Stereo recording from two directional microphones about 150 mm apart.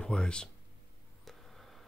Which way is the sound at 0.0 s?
5° left (ahead or behind).